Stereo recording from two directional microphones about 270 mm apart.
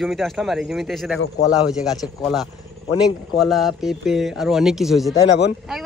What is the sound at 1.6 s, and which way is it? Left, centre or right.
Speech, centre.